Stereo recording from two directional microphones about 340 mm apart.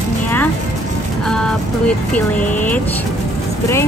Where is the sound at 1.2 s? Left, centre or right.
Centre.